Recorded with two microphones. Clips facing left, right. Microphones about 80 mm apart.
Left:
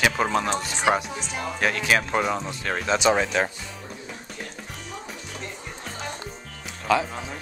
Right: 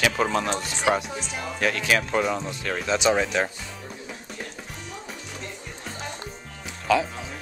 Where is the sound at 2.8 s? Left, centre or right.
Centre.